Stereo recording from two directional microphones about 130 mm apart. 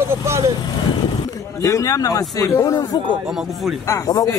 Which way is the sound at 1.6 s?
25° left (ahead or behind).